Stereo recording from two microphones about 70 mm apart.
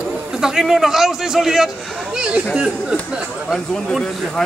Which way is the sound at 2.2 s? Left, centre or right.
Centre.